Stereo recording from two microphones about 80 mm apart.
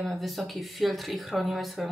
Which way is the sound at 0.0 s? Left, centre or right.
Centre.